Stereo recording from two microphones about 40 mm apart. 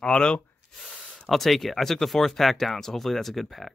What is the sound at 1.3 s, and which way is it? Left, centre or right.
Speech, centre.